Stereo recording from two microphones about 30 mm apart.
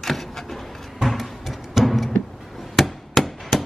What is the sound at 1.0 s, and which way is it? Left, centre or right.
Music, centre.